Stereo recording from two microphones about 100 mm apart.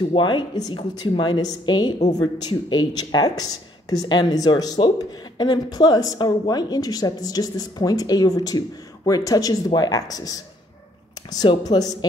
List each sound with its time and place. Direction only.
0.1 s speech: 50° left (ahead or behind)